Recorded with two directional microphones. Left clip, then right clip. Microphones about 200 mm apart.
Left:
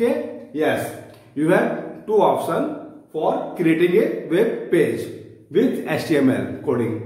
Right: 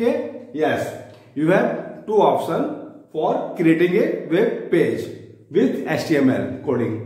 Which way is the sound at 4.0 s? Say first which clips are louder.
Even; 10° right (ahead or behind).